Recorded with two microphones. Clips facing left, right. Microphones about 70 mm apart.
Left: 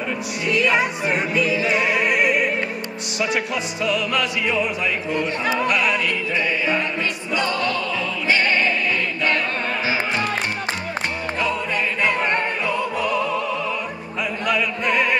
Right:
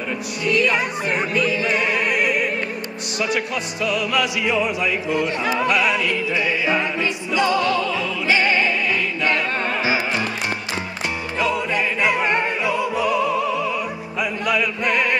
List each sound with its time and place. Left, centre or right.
0.5 s music: centre
3.8 s music: centre
7.3 s opera: centre
8.3 s music: centre
11.4 s music: centre
14.4 s music: centre